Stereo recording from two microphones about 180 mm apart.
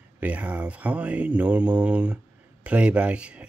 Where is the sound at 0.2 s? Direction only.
10° right (ahead or behind).